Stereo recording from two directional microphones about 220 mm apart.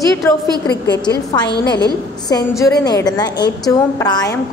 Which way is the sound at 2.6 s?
15° left (ahead or behind).